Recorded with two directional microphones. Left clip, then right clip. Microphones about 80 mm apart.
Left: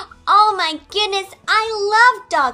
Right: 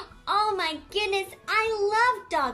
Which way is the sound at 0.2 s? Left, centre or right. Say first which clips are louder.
Left 12 dB; right.